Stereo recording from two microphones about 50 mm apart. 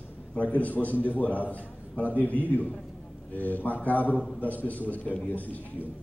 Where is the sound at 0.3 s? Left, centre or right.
Left.